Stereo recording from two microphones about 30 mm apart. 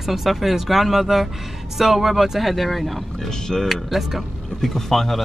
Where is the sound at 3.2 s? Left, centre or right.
Centre.